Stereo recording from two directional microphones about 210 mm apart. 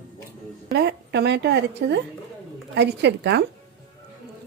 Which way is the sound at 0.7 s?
50° right (ahead or behind).